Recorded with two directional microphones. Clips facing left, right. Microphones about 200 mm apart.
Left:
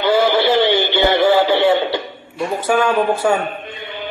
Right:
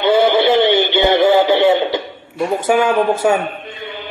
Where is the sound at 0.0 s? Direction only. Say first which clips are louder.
Right 2 dB; 25° right (ahead or behind).